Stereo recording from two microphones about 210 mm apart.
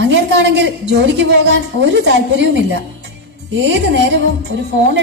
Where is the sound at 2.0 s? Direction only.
55° right (ahead or behind).